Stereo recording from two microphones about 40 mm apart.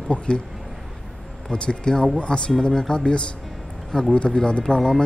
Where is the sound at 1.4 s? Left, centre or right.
Left.